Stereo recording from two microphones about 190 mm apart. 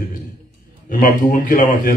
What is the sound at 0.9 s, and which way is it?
Speech, 45° left (ahead or behind).